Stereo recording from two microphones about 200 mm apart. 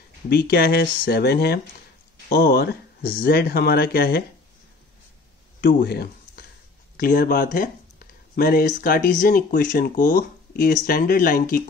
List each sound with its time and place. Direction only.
0.3 s speech: 50° left (ahead or behind)
5.6 s speech: 50° left (ahead or behind)